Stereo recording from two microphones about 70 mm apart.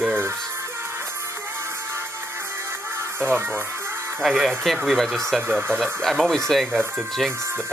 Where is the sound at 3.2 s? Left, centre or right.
Right.